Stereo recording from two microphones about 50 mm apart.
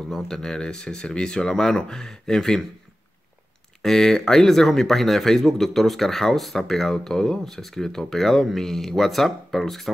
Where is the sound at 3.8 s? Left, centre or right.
Centre.